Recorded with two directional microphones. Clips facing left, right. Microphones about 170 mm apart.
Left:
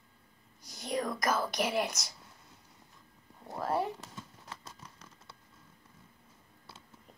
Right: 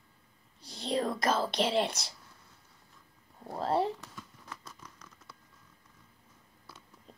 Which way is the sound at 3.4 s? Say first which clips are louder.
Right 3 dB; 25° right (ahead or behind).